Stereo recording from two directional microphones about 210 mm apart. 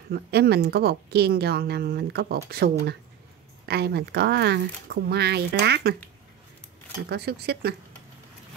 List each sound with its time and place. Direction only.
0.1 s a woman's voice: 50° right (ahead or behind)
7.1 s a woman's voice: 50° right (ahead or behind)